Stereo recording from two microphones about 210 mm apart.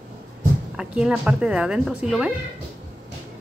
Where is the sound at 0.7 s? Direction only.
5° right (ahead or behind).